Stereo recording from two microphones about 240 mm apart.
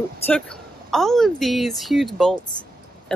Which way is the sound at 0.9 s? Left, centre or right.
Centre.